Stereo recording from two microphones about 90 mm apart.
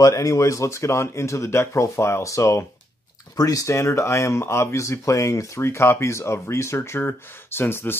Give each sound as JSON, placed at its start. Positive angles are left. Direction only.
{"t": 0.0, "sound": "speech", "side_deg": 40}